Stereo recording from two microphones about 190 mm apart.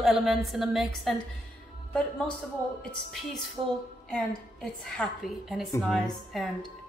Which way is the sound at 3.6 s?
25° right (ahead or behind).